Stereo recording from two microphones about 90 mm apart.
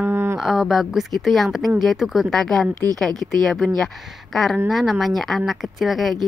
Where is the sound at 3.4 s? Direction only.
Centre (ahead or behind).